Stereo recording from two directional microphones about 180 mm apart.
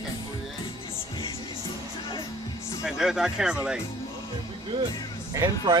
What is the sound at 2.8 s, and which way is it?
Speech, centre (ahead or behind).